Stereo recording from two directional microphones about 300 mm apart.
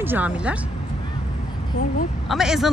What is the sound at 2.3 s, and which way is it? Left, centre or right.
Speech, centre.